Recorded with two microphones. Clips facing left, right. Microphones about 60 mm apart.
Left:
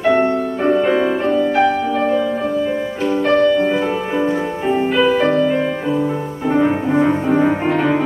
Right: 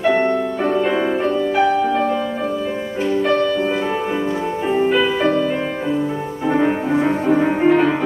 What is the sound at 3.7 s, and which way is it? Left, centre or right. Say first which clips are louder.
Music: left 2 dB; left.